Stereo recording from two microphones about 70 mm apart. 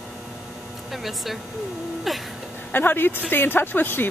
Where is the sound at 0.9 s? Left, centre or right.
Centre.